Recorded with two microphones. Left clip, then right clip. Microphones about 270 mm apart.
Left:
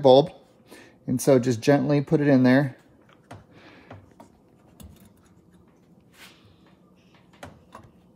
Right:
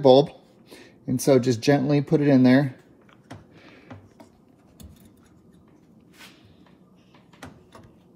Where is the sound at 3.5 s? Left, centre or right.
Left.